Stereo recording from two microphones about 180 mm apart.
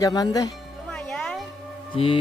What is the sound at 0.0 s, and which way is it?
Speech, 20° left (ahead or behind).